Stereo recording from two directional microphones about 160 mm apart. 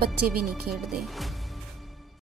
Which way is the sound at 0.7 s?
Centre (ahead or behind).